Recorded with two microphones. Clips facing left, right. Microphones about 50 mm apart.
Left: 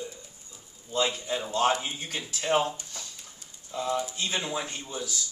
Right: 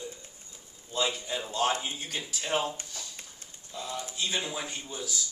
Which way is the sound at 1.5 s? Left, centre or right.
Left.